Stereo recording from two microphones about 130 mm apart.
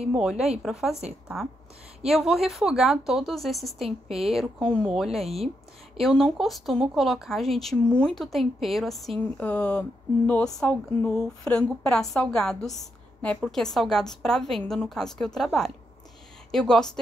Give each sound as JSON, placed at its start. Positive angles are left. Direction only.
{"t": 0.1, "sound": "a woman's voice", "side_deg": -5}
{"t": 2.0, "sound": "a woman's voice", "side_deg": -5}
{"t": 5.2, "sound": "speech", "side_deg": -50}
{"t": 5.9, "sound": "a woman's voice", "side_deg": 0}